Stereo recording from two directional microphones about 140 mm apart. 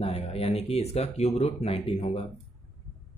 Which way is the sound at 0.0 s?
45° left (ahead or behind).